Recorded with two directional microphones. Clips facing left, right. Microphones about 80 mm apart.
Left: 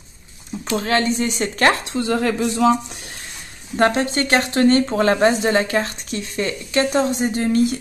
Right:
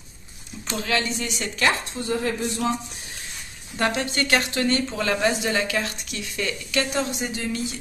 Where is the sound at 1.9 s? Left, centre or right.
Left.